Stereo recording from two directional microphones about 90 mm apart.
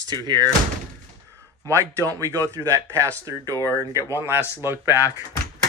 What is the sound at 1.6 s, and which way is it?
A man's voice, 35° right (ahead or behind).